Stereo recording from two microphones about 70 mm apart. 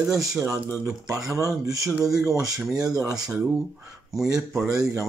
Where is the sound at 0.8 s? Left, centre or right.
Right.